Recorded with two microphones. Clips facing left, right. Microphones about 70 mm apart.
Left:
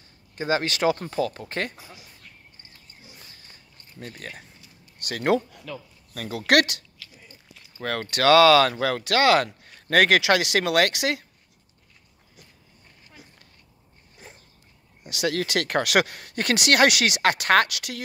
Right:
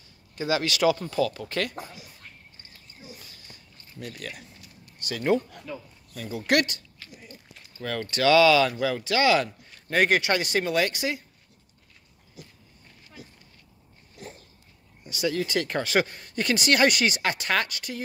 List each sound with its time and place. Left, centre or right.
0.4 s speech: left
4.0 s speech: left
5.0 s speech: left
5.7 s speech: left
7.8 s speech: left
15.0 s speech: left